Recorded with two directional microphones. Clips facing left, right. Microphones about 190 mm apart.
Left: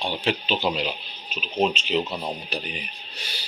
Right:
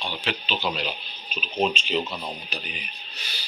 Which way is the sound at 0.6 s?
20° left (ahead or behind).